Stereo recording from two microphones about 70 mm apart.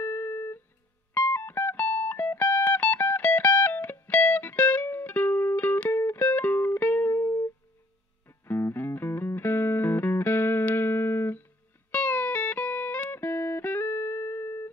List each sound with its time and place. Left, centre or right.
0.0 s music: left